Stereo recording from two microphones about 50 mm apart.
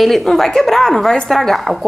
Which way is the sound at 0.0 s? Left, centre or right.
Centre.